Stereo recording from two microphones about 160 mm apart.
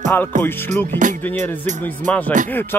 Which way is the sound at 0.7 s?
50° right (ahead or behind).